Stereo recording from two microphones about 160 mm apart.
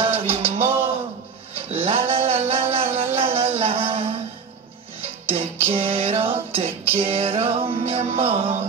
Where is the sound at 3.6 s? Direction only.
35° right (ahead or behind).